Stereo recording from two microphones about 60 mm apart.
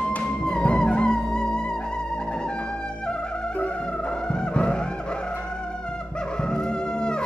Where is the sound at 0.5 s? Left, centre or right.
Centre.